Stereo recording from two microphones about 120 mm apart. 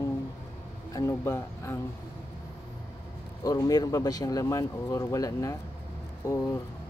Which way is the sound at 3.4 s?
30° left (ahead or behind).